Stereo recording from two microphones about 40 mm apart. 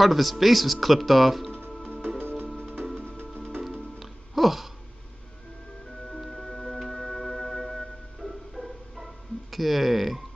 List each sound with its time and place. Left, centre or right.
0.0 s speech: centre
2.0 s music: right
4.0 s music: centre
6.0 s music: centre
8.2 s music: centre